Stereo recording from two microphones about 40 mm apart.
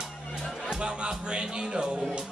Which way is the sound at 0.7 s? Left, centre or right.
Right.